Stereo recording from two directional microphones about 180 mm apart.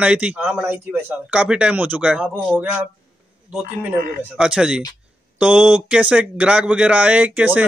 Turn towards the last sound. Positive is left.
turn(degrees=-10)  # may be behind; listen again after turning